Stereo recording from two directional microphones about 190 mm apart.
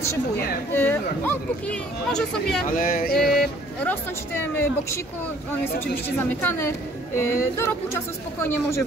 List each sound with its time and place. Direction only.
0.7 s speech: 10° left (ahead or behind)
2.8 s a sound: 50° left (ahead or behind)
3.2 s speech: centre (ahead or behind)
3.9 s speech: 10° left (ahead or behind)
7.2 s speech: 15° left (ahead or behind)